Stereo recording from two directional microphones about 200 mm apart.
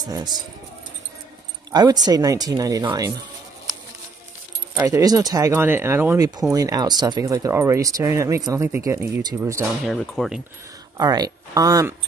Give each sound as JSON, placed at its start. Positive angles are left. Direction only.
{"t": 0.0, "sound": "speech", "side_deg": -20}
{"t": 1.7, "sound": "speech", "side_deg": -20}
{"t": 4.7, "sound": "speech", "side_deg": -15}
{"t": 9.8, "sound": "speech", "side_deg": 0}
{"t": 11.0, "sound": "speech", "side_deg": -20}